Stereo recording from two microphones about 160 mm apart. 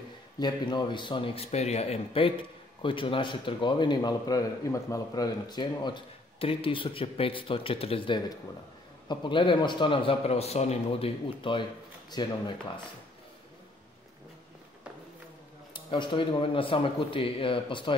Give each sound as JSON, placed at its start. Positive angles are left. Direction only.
{"t": 0.4, "sound": "speech", "side_deg": 30}
{"t": 15.7, "sound": "speech", "side_deg": 30}